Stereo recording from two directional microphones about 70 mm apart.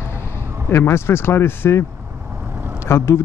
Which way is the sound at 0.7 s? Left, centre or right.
Left.